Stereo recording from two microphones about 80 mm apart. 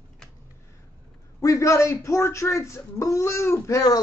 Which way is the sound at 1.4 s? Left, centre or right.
Left.